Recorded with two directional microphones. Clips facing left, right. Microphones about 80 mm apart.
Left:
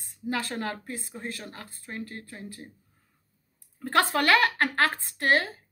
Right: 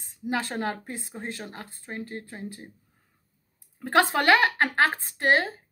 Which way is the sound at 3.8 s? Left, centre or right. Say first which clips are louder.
Right 2 dB; right.